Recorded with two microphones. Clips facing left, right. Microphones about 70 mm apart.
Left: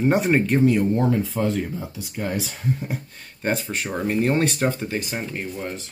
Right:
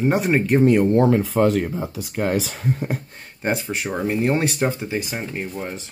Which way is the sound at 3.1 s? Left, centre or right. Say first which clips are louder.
Left 2 dB; centre.